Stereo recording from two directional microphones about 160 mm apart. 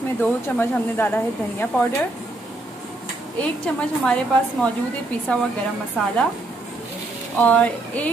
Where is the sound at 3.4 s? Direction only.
5° left (ahead or behind).